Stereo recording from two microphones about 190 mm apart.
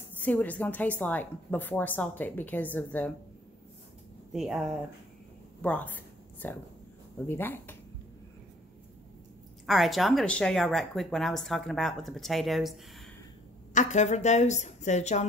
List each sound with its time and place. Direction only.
0.2 s a woman's voice: 10° left (ahead or behind)
4.3 s speech: centre (ahead or behind)
5.6 s a sound: 10° left (ahead or behind)
7.2 s a woman's voice: 10° left (ahead or behind)
9.7 s speech: centre (ahead or behind)
13.7 s a woman's voice: 40° left (ahead or behind)